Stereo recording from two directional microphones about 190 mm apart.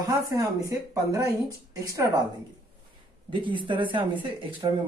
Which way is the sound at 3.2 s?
25° right (ahead or behind).